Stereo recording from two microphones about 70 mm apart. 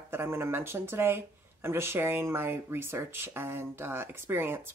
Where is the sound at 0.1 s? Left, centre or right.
Right.